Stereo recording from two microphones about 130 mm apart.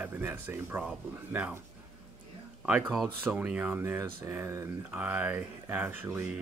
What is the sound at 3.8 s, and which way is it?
Speech, 20° right (ahead or behind).